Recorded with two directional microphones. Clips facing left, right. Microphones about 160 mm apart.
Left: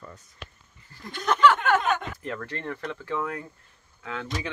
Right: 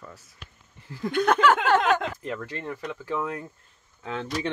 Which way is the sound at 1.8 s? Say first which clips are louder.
Right 4 dB; 90° right.